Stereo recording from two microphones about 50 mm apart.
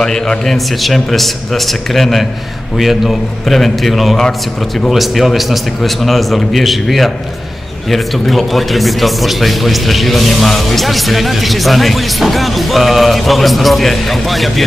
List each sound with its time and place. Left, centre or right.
0.0 s a man's voice: centre